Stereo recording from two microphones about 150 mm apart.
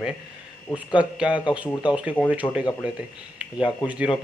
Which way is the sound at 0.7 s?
10° right (ahead or behind).